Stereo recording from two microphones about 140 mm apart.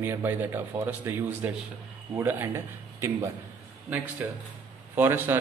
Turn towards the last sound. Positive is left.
turn(degrees=-15)  # may be behind; listen again after turning